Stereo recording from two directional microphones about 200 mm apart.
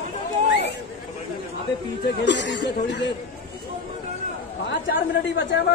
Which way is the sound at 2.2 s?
60° left (ahead or behind).